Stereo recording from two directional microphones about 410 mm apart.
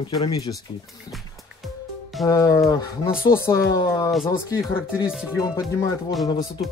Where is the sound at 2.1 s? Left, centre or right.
Centre.